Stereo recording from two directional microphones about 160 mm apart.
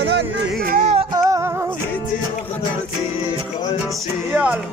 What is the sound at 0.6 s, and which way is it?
Music, 55° right (ahead or behind).